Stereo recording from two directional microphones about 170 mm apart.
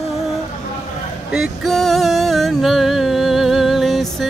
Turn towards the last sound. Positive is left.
turn(degrees=0)  # may be behind; listen again after turning